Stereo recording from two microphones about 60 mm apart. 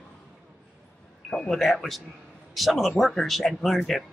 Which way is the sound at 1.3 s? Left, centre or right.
Centre.